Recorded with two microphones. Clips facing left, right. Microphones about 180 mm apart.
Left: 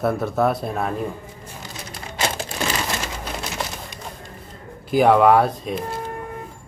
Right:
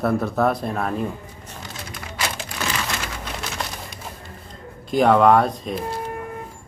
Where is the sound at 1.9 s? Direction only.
30° left (ahead or behind).